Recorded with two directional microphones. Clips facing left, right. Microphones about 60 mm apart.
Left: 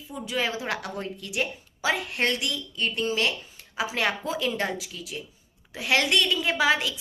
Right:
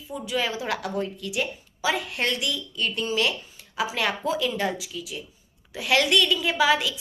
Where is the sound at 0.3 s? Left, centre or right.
Left.